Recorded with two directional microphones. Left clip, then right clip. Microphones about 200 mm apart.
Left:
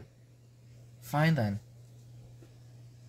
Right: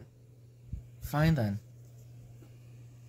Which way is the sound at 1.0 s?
15° right (ahead or behind).